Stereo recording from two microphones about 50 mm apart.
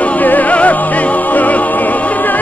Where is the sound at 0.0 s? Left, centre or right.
Left.